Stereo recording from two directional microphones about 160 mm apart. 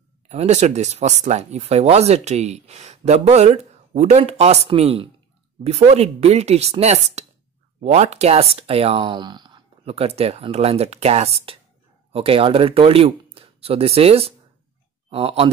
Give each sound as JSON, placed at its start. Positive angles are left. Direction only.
{"t": 0.3, "sound": "speech", "side_deg": -45}